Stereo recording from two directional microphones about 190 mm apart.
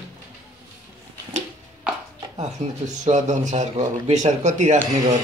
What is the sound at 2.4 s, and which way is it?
Speech, 40° right (ahead or behind).